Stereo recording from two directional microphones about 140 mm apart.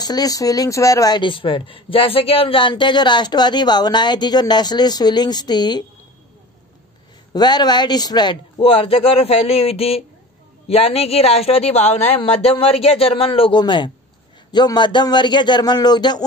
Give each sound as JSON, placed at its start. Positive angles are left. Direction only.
{"t": 0.0, "sound": "speech", "side_deg": 30}
{"t": 7.3, "sound": "speech", "side_deg": 30}